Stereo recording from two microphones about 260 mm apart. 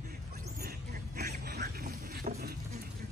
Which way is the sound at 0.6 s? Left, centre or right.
Right.